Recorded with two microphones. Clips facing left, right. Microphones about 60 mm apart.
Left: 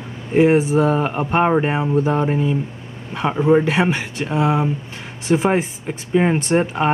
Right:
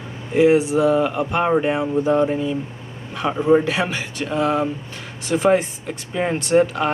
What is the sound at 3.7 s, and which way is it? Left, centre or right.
Speech, left.